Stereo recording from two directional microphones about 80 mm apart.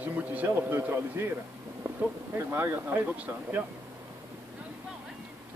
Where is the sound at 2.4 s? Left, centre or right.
Right.